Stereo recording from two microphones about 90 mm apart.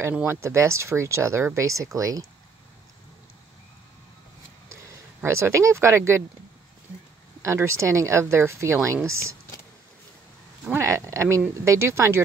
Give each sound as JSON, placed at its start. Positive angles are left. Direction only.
{"t": 0.3, "sound": "speech", "side_deg": -30}
{"t": 5.2, "sound": "speech", "side_deg": -30}
{"t": 7.4, "sound": "speech", "side_deg": -30}
{"t": 10.7, "sound": "speech", "side_deg": -35}